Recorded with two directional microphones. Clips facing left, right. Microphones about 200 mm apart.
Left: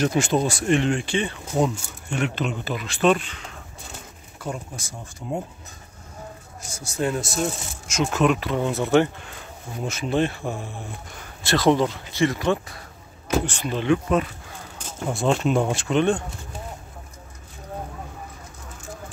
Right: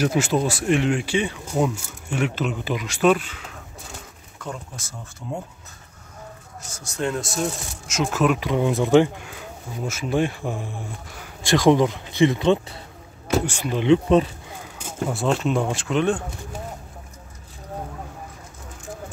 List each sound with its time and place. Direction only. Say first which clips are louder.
0.0 s speech: even; 5° right (ahead or behind)
4.4 s speech: left 2 dB; 10° left (ahead or behind)
6.7 s speech: left 1 dB; 5° left (ahead or behind)
8.4 s speech: right 3 dB; 15° right (ahead or behind)
13.5 s speech: right 2 dB; 10° right (ahead or behind)
13.8 s speech: right 5 dB; 25° right (ahead or behind)
15.0 s speech: left 1 dB; centre (ahead or behind)